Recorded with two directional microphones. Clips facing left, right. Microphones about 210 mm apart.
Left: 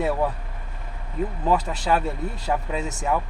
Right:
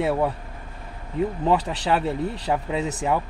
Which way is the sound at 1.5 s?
25° right (ahead or behind).